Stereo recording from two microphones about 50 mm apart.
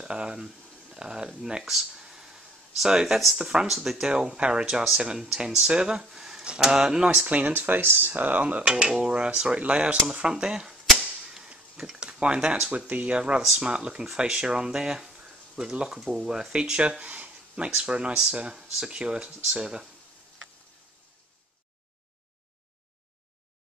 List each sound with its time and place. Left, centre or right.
0.0 s speech: centre
4.1 s speech: centre
7.2 s speech: right
8.1 s speech: right
8.6 s speech: centre
11.0 s a sound: centre
11.7 s speech: centre
12.7 s speech: right
13.2 s speech: centre
18.6 s speech: centre
18.9 s speech: centre